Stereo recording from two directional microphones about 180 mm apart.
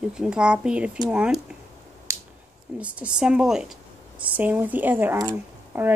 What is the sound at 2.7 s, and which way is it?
A woman's voice, 5° right (ahead or behind).